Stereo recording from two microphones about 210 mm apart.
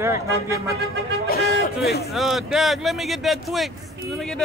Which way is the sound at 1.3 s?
45° left (ahead or behind).